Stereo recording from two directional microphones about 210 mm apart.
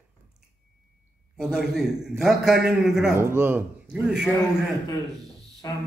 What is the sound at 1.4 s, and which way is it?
A man's voice, centre (ahead or behind).